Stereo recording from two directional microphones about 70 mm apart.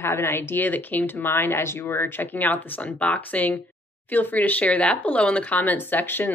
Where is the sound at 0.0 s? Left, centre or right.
Left.